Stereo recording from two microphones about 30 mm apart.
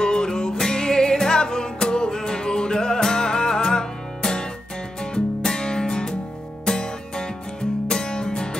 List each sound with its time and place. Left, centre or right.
0.0 s music: left